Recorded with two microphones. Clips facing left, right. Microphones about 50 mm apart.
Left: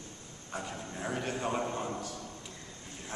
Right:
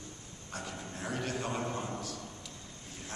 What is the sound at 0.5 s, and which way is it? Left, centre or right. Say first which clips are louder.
A man's voice: left 2 dB; centre.